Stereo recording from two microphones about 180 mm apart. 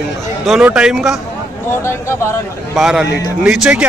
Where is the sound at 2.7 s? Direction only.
5° right (ahead or behind).